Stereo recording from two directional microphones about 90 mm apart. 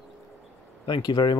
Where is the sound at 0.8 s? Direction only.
55° left (ahead or behind).